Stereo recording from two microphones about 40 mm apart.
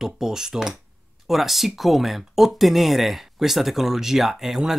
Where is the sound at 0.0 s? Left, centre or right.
Centre.